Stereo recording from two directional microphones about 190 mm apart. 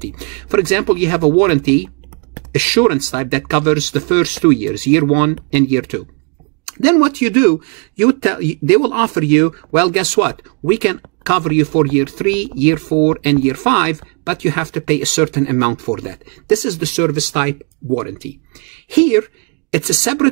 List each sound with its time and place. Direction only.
0.5 s speech: 10° right (ahead or behind)
2.7 s speech: 10° right (ahead or behind)
19.7 s speech: 10° right (ahead or behind)